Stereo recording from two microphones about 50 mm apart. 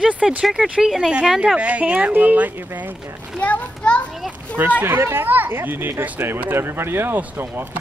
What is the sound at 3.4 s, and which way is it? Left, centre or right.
Speech, left.